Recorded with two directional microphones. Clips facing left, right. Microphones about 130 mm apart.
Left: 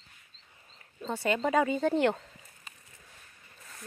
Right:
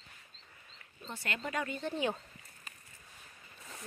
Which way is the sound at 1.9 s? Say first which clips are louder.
Left 5 dB; 70° left (ahead or behind).